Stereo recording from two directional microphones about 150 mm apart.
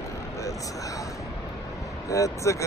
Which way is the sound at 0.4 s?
20° left (ahead or behind).